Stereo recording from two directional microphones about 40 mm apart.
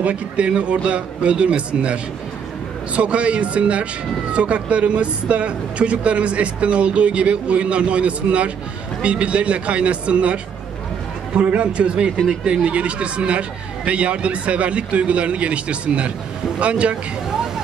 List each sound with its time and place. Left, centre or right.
0.0 s a man's voice: right
3.0 s a man's voice: right